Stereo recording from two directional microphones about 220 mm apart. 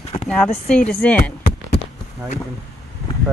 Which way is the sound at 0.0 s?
30° left (ahead or behind).